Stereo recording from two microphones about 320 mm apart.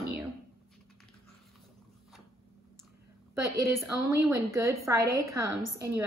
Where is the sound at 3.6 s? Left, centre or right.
Centre.